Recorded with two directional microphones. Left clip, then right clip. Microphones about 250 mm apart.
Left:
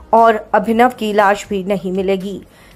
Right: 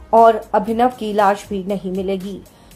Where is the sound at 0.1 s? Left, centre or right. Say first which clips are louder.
Left 1 dB; centre.